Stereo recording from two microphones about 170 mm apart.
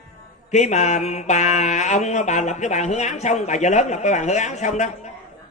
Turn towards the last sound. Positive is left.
turn(degrees=45)  # may be behind; listen again after turning